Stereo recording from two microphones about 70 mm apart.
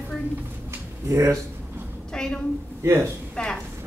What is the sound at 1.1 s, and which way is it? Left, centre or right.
Speech, right.